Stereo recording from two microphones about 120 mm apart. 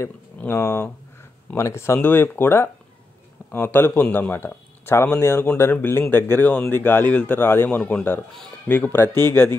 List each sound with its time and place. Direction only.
0.0 s speech: 20° left (ahead or behind)